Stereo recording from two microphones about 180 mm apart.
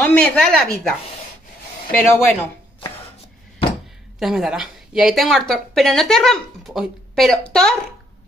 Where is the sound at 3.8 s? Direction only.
Centre (ahead or behind).